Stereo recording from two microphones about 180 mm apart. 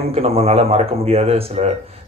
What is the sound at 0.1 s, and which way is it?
Speech, 35° right (ahead or behind).